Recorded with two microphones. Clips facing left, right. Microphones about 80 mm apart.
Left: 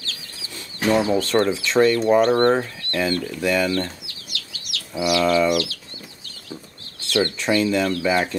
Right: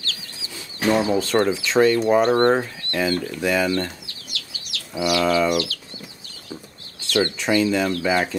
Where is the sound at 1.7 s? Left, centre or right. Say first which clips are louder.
Even; centre.